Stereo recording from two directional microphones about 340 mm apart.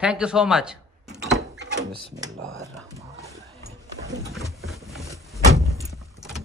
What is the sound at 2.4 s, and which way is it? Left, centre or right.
Speech, right.